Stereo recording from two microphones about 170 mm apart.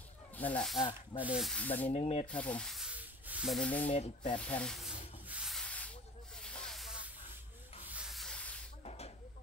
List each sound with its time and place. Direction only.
0.4 s sanding: 5° left (ahead or behind)
1.9 s rub: 40° left (ahead or behind)
2.2 s sanding: 5° left (ahead or behind); by 3.5 s 10° right (ahead or behind)
3.5 s rub: 10° left (ahead or behind)
3.9 s rub: 35° left (ahead or behind)
4.4 s sanding: 5° left (ahead or behind)
6.3 s a sound: 5° left (ahead or behind)
7.8 s sanding: 5° right (ahead or behind)
8.8 s a sound: 40° left (ahead or behind)